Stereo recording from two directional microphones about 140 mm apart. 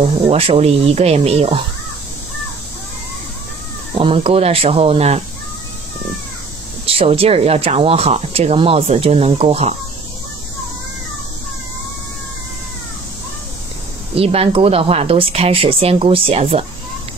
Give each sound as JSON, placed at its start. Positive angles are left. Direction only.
{"t": 0.0, "sound": "speech", "side_deg": -45}
{"t": 4.0, "sound": "speech", "side_deg": -40}
{"t": 6.9, "sound": "speech", "side_deg": -45}
{"t": 14.1, "sound": "speech", "side_deg": -45}